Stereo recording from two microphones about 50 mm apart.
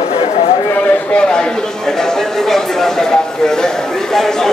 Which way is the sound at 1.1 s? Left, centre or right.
Centre.